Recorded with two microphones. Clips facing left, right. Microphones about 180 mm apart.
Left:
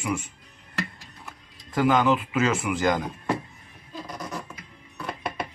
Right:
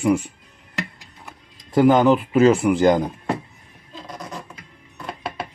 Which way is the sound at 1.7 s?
35° right (ahead or behind).